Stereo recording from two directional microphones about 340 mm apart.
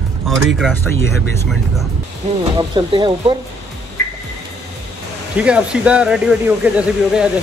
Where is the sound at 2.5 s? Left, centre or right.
Centre.